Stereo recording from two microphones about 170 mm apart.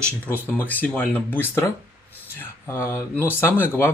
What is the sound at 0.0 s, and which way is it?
Speech, 10° left (ahead or behind).